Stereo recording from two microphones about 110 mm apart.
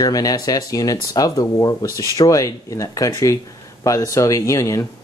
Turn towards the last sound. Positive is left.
turn(degrees=25)  # may be behind; listen again after turning